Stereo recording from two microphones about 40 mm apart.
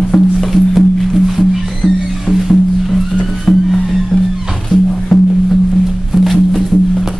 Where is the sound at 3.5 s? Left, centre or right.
Left.